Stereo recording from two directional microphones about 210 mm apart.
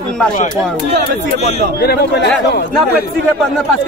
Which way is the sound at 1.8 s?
50° left (ahead or behind).